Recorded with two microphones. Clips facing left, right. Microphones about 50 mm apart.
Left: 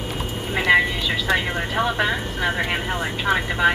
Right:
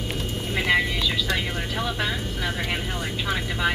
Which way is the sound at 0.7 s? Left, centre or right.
Centre.